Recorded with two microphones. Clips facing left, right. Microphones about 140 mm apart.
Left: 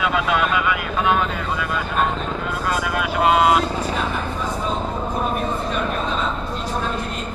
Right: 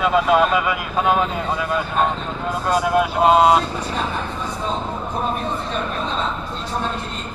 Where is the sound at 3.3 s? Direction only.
40° right (ahead or behind).